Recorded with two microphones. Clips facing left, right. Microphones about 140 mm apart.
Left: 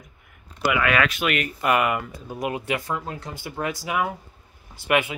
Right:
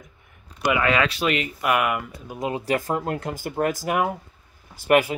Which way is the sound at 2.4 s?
30° right (ahead or behind).